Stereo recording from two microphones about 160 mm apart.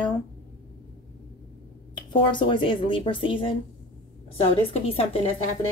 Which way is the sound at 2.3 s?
30° left (ahead or behind).